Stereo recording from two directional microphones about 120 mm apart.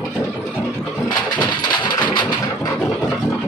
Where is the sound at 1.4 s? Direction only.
40° left (ahead or behind).